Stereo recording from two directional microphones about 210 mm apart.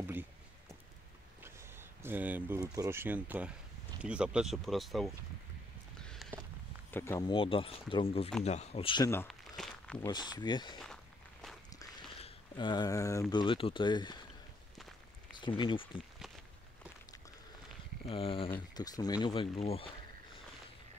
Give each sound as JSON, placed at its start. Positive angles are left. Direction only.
{"t": 1.4, "sound": "speech", "side_deg": -10}
{"t": 6.0, "sound": "walk", "side_deg": 0}
{"t": 6.9, "sound": "speech", "side_deg": 10}
{"t": 9.3, "sound": "walk", "side_deg": 0}
{"t": 10.0, "sound": "speech", "side_deg": 20}
{"t": 12.2, "sound": "speech", "side_deg": 25}
{"t": 15.3, "sound": "speech", "side_deg": 20}
{"t": 18.0, "sound": "speech", "side_deg": 25}